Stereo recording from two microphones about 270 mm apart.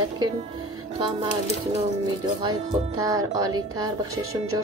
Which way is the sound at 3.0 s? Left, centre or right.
Centre.